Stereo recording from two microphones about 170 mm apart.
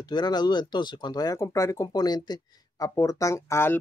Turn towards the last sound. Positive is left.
turn(degrees=15)  # may be behind; listen again after turning